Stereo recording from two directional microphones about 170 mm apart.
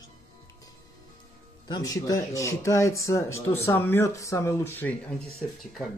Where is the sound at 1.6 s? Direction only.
25° left (ahead or behind).